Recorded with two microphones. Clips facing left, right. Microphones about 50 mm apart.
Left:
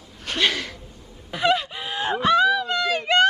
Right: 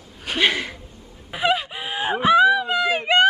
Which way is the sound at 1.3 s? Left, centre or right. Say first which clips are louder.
Even; centre.